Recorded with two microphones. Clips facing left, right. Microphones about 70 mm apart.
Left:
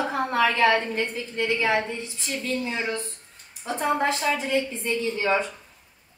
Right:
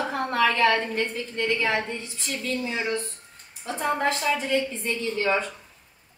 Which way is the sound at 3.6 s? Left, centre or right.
Centre.